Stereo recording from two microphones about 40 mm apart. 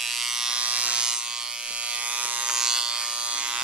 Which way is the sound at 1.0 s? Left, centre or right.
Centre.